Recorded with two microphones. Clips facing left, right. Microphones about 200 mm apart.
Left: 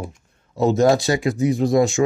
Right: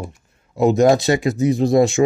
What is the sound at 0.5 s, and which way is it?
Speech, 15° right (ahead or behind).